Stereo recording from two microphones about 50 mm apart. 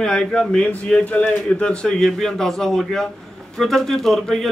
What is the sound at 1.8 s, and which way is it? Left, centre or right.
A man's voice, centre.